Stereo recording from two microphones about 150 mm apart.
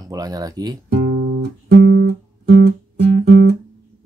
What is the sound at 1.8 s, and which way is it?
Music, 70° right (ahead or behind).